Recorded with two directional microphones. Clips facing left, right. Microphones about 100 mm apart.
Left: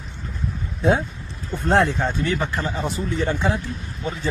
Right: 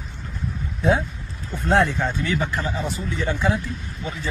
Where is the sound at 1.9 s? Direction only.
45° left (ahead or behind).